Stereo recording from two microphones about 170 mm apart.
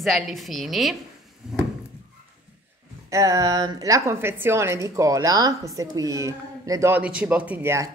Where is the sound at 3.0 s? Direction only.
20° right (ahead or behind).